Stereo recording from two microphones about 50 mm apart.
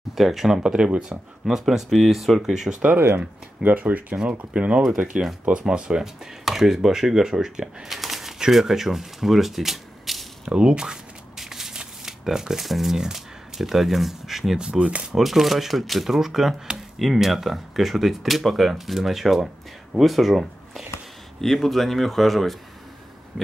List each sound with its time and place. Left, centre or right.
0.1 s speech: centre
3.6 s speech: right
4.3 s speech: right
4.9 s speech: centre
10.4 s shuffling cards: centre
14.6 s speech: right
15.1 s speech: centre